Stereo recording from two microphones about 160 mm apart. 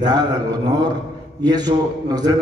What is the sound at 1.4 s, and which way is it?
Speech, 25° right (ahead or behind).